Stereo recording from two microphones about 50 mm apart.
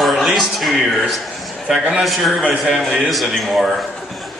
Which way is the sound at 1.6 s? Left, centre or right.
Centre.